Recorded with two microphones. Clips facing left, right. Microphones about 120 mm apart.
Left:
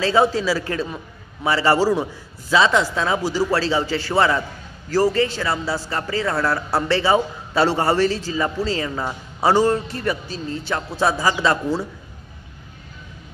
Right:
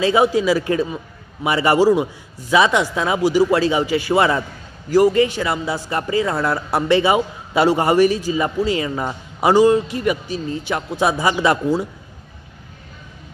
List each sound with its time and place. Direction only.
0.0 s speech: 15° right (ahead or behind)